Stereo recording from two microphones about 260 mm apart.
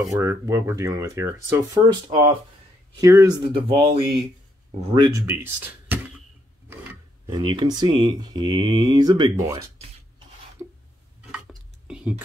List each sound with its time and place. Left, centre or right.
0.0 s speech: centre
7.2 s speech: centre
11.9 s a sound: centre